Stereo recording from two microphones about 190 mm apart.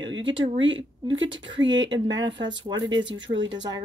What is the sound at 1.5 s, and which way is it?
Speech, 75° right (ahead or behind).